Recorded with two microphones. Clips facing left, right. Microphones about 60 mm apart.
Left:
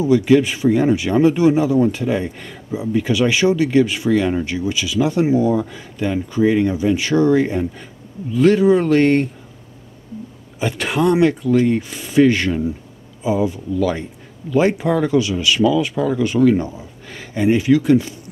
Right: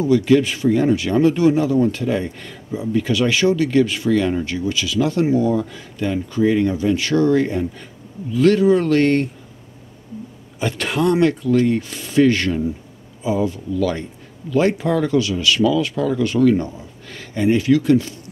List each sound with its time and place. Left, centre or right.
0.0 s speech: centre
10.6 s speech: centre